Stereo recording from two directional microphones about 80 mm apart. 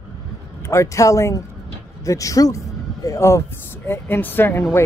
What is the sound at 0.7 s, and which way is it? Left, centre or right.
Speech, left.